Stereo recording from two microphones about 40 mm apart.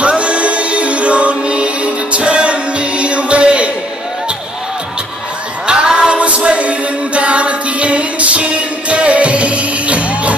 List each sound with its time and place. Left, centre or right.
0.0 s music: right
5.7 s music: right